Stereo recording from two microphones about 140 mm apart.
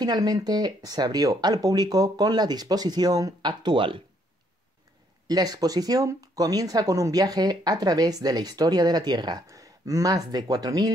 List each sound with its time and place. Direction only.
0.0 s speech: 30° right (ahead or behind)
5.2 s speech: 25° right (ahead or behind)